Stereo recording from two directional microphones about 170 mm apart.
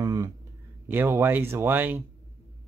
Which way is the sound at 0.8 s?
15° right (ahead or behind).